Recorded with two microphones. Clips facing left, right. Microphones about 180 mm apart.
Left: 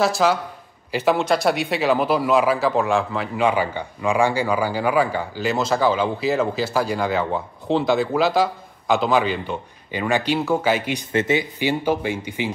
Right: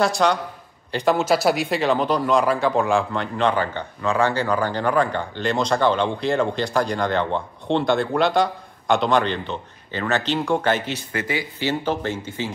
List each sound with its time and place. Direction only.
0.0 s speech: 5° left (ahead or behind)
11.1 s speech: 25° left (ahead or behind)
11.8 s speech: 10° left (ahead or behind)